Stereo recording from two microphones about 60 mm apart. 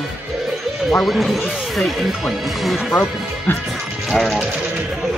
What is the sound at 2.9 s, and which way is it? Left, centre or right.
Speech, left.